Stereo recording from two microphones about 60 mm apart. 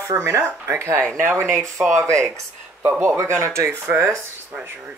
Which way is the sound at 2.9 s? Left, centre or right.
Right.